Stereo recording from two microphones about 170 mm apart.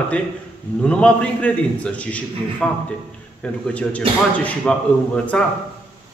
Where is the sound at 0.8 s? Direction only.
5° left (ahead or behind).